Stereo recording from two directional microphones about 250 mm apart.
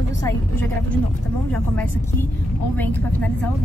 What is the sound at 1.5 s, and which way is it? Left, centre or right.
Speech, centre.